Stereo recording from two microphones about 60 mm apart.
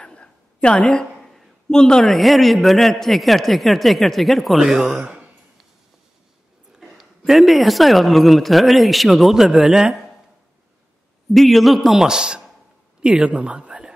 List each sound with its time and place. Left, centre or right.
0.0 s a woman's voice: centre
6.8 s a woman's voice: centre
11.3 s a woman's voice: centre